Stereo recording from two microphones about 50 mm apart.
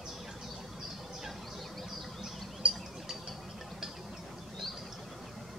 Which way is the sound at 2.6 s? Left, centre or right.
Right.